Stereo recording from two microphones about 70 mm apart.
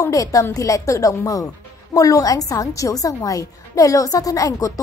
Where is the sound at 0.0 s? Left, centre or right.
Left.